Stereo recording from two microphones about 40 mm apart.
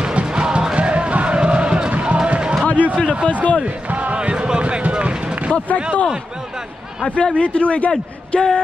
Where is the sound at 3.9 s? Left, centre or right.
Right.